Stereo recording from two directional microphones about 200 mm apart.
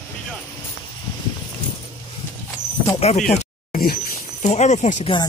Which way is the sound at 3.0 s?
30° left (ahead or behind).